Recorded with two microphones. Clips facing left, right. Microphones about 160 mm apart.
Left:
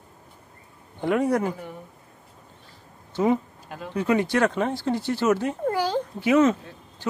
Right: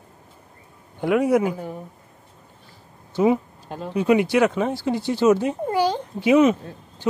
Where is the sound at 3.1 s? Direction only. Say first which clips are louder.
Right 3 dB; 10° right (ahead or behind).